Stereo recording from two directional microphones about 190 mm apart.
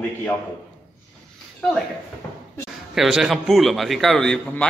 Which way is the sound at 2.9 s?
Centre (ahead or behind).